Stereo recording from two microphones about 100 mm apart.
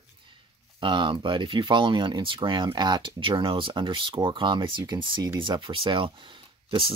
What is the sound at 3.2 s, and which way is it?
Speech, 60° right (ahead or behind).